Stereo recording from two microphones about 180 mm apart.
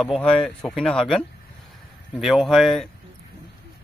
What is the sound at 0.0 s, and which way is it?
A man's voice, 5° left (ahead or behind).